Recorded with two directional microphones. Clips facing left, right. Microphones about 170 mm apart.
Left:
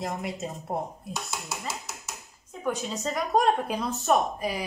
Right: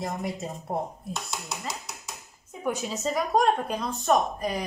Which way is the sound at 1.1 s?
5° left (ahead or behind).